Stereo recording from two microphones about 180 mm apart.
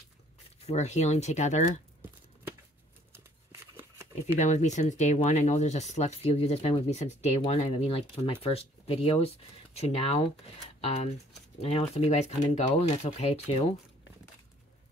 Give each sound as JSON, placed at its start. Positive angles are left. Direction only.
{"t": 0.7, "sound": "speech", "side_deg": 40}
{"t": 3.1, "sound": "a sound", "side_deg": -15}
{"t": 4.4, "sound": "speech", "side_deg": 40}
{"t": 11.6, "sound": "speech", "side_deg": 35}